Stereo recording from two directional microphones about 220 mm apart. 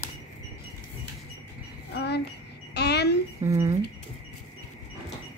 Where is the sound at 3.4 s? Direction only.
15° right (ahead or behind).